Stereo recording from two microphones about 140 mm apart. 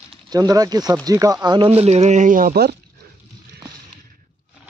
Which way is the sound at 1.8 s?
50° right (ahead or behind).